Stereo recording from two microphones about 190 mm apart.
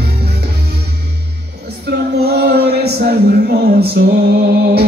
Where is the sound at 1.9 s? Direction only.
60° right (ahead or behind).